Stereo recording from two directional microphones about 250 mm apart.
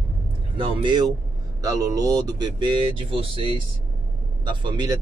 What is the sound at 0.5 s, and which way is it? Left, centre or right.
Speech, centre.